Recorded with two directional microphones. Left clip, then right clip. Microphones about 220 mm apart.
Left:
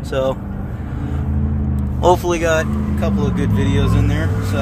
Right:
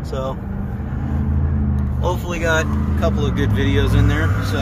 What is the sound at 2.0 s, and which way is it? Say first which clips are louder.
Speech: left 10 dB; 50° left (ahead or behind).